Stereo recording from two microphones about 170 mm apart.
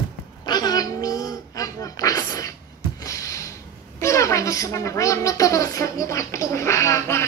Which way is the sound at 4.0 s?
15° left (ahead or behind).